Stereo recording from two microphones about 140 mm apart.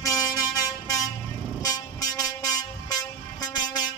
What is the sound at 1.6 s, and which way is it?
Train, 25° left (ahead or behind).